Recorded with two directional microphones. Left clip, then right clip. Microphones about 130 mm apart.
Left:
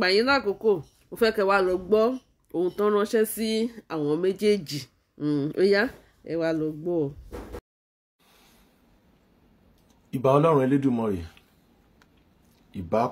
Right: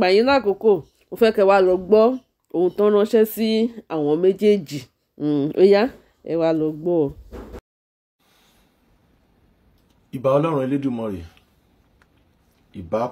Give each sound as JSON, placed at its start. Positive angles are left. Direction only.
{"t": 0.0, "sound": "speech", "side_deg": -20}
{"t": 10.1, "sound": "a man's voice", "side_deg": 20}
{"t": 12.7, "sound": "speech", "side_deg": 15}